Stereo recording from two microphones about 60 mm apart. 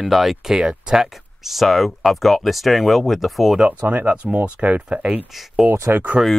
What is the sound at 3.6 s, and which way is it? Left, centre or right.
Speech, right.